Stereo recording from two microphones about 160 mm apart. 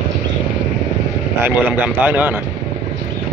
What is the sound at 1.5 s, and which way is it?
Speech, 10° right (ahead or behind).